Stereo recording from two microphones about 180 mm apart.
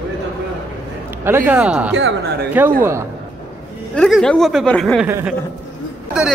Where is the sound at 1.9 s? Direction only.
85° right.